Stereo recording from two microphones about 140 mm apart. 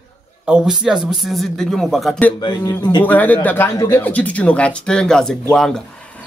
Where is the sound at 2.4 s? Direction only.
30° left (ahead or behind).